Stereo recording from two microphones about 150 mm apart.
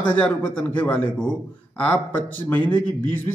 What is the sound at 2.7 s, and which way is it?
Speech, 15° left (ahead or behind).